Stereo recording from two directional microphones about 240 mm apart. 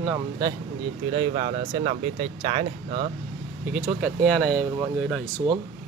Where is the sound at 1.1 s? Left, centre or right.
Right.